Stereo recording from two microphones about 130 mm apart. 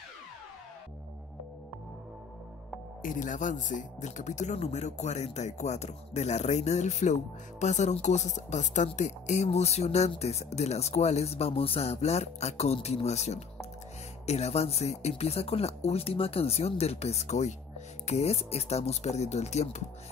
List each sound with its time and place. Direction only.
3.0 s speech: 85° left; by 19.8 s 55° left (ahead or behind)